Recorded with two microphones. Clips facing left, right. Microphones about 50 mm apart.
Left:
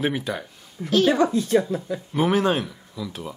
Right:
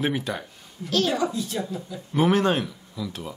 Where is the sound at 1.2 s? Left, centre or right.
Left.